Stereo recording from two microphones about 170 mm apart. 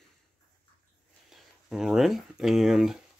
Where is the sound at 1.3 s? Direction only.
Centre (ahead or behind).